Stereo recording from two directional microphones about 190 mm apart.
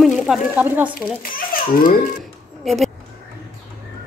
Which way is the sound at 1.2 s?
50° left (ahead or behind).